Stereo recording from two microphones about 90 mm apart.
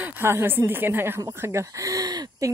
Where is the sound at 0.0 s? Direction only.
25° right (ahead or behind).